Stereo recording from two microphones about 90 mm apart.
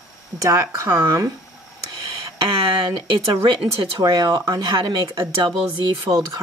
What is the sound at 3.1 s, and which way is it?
Speech, 75° right (ahead or behind).